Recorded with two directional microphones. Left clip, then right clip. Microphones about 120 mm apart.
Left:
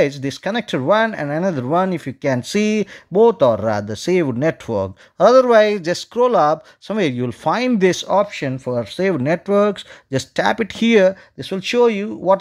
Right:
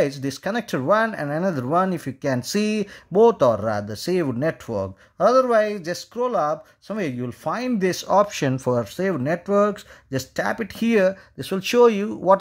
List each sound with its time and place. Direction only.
0.0 s speech: 15° left (ahead or behind)
3.1 s speech: 10° left (ahead or behind)
3.5 s speech: 25° left (ahead or behind)
8.3 s speech: 10° right (ahead or behind)
8.8 s speech: 15° left (ahead or behind)
11.3 s speech: centre (ahead or behind)